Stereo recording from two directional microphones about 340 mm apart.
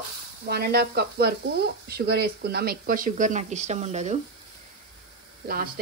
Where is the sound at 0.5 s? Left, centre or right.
Right.